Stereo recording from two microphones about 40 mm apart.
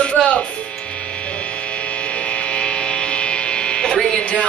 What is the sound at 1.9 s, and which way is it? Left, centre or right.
Hum, left.